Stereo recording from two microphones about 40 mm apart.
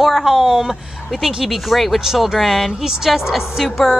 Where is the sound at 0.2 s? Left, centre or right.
Centre.